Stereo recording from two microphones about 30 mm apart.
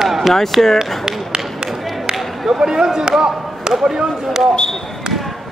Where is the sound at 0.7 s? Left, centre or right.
Centre.